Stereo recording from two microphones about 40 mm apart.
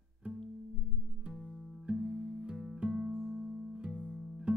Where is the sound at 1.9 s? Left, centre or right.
Right.